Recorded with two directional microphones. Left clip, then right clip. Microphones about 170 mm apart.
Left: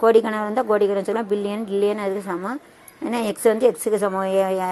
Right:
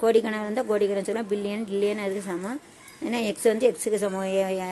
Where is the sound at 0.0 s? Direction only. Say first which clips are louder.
Left 6 dB; 5° left (ahead or behind).